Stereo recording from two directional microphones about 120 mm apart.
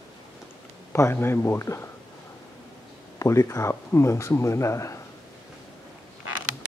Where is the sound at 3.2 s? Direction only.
25° left (ahead or behind).